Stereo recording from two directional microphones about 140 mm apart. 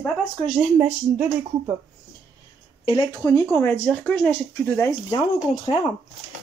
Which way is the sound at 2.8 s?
35° left (ahead or behind).